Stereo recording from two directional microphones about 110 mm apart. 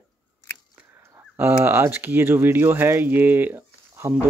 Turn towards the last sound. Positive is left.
turn(degrees=-20)  # may be behind; listen again after turning